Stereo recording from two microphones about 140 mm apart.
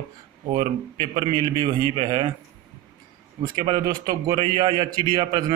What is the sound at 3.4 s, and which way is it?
A man's voice, 35° right (ahead or behind).